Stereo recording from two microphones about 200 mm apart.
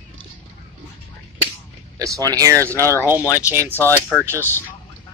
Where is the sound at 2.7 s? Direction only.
10° left (ahead or behind).